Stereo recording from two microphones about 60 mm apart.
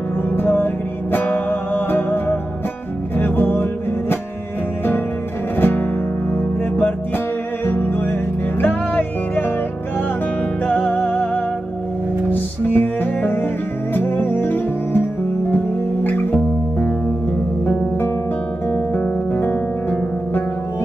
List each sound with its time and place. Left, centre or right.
0.4 s music: left
5.6 s music: left
7.6 s music: left
10.7 s music: left